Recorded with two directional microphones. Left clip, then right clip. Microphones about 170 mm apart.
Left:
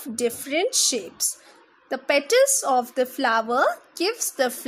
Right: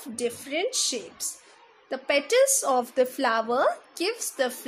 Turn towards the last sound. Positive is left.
turn(degrees=20)  # may be behind; listen again after turning